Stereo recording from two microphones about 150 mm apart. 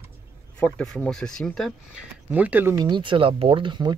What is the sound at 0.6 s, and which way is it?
Speech, 5° left (ahead or behind).